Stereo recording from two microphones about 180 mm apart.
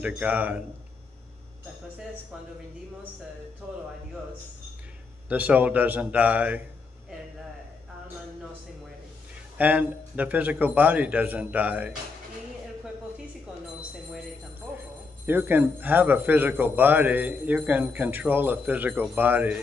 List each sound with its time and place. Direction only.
0.0 s a man's voice: 5° right (ahead or behind)
3.6 s a man's voice: 10° right (ahead or behind)
5.3 s a man's voice: 10° right (ahead or behind)
9.6 s a man's voice: 10° right (ahead or behind)
15.2 s a man's voice: 10° right (ahead or behind)